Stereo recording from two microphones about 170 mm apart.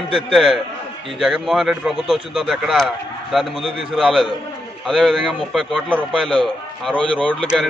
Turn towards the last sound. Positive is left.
turn(degrees=5)  # may be behind; listen again after turning